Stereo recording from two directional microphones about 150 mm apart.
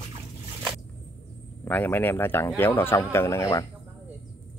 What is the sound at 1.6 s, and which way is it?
Speech, 10° left (ahead or behind).